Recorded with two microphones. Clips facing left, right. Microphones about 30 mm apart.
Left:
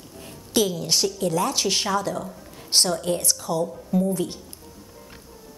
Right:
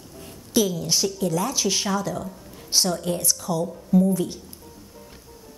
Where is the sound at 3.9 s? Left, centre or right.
Left.